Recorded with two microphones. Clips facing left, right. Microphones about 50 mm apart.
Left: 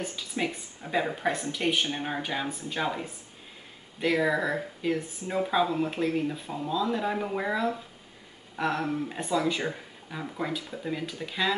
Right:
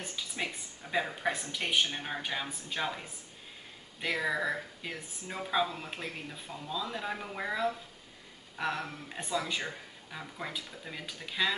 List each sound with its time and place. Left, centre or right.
0.0 s speech: centre